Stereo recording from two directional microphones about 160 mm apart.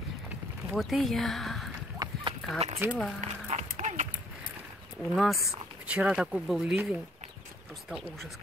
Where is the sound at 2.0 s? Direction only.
30° right (ahead or behind).